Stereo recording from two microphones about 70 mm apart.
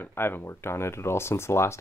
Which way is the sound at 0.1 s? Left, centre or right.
Left.